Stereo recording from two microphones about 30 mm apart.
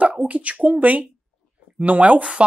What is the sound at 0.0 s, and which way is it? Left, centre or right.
Speech, right.